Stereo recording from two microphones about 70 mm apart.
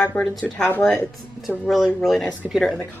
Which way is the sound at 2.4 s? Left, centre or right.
Right.